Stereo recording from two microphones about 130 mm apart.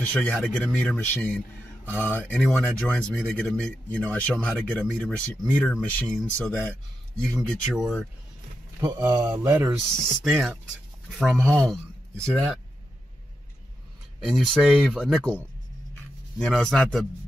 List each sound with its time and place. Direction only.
0.0 s speech: 10° left (ahead or behind)
5.9 s speech: 10° left (ahead or behind)
8.9 s speech: 20° right (ahead or behind)
9.8 s speech: 5° right (ahead or behind)
11.1 s speech: 5° left (ahead or behind)
14.2 s speech: centre (ahead or behind)